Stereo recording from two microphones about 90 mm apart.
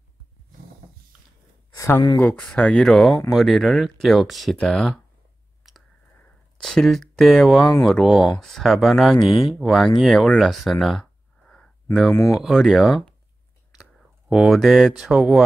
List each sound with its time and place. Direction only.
1.8 s speech: 35° left (ahead or behind)
2.1 s speech: 15° left (ahead or behind)
5.6 s clicking: centre (ahead or behind)
6.6 s speech: 5° left (ahead or behind)
12.1 s speech: 35° left (ahead or behind)
12.4 s speech: 5° right (ahead or behind)
14.3 s speech: centre (ahead or behind)